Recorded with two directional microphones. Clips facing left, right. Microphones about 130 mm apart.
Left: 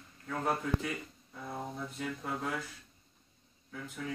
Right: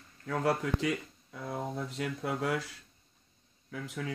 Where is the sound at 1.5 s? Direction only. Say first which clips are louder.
Right 4 dB; 85° right.